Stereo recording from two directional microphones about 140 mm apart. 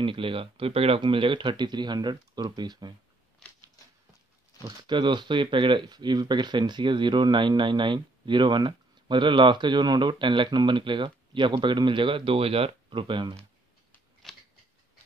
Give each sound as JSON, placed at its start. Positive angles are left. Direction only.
{"t": 0.0, "sound": "speech", "side_deg": -40}
{"t": 3.4, "sound": "a sound", "side_deg": 5}
{"t": 4.6, "sound": "speech", "side_deg": -35}
{"t": 14.2, "sound": "scissors", "side_deg": 0}